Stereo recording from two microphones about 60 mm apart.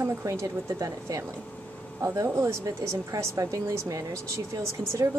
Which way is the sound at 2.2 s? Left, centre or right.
Right.